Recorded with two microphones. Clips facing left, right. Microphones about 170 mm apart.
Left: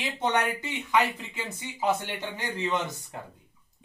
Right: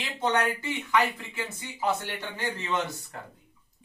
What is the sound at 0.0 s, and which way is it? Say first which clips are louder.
Speech: even; 20° left (ahead or behind).